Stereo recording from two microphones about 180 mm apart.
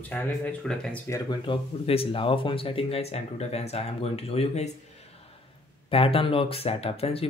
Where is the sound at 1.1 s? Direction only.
25° left (ahead or behind).